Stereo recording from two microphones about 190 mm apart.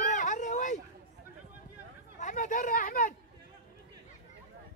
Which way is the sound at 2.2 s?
40° left (ahead or behind).